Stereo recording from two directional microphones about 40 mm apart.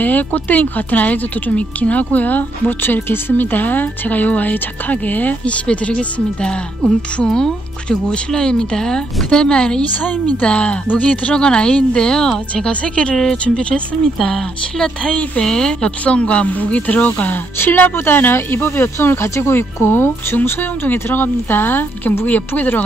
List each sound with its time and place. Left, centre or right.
0.0 s speech: left
5.4 s speech: left
10.0 s speech: left
10.4 s speech: left
11.3 s speech: left
12.8 s speech: left
13.1 s speech: centre
13.6 s speech: left
14.2 s speech: centre
15.0 s speech: left
16.0 s speech: left
16.5 s speech: left
17.9 s speech: left
20.4 s speech: left